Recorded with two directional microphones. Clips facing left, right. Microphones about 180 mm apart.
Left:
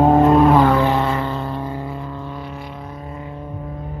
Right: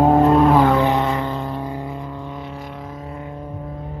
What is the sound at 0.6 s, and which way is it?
Vehicle, 20° right (ahead or behind).